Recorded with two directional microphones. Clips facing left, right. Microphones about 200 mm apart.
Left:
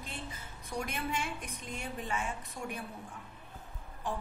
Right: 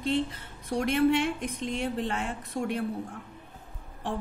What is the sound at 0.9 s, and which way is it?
A woman's voice, 65° right (ahead or behind).